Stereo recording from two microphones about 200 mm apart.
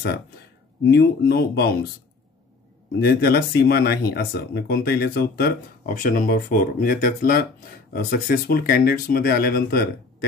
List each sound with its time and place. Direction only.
0.8 s speech: 55° left (ahead or behind)
3.0 s speech: 50° left (ahead or behind)